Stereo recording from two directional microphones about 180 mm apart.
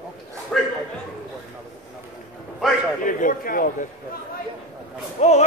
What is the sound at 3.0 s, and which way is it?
Speech, 50° left (ahead or behind).